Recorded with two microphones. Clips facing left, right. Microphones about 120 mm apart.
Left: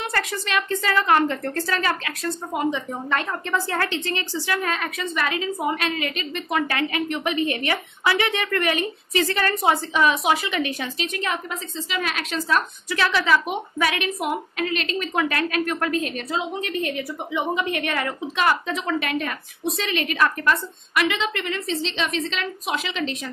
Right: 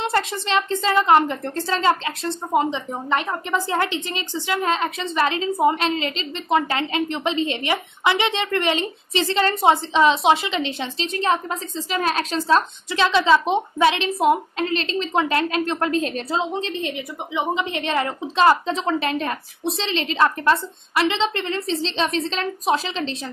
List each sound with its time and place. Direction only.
0.0 s a woman's voice: 25° right (ahead or behind)